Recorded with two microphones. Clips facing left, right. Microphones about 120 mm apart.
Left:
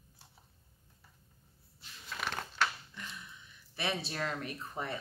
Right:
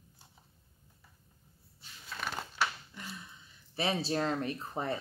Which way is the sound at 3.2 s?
30° right (ahead or behind).